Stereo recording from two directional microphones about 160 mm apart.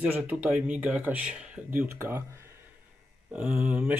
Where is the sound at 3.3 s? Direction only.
10° right (ahead or behind).